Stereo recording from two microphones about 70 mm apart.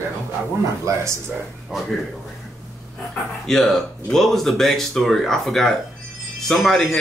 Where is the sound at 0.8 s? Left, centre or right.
Right.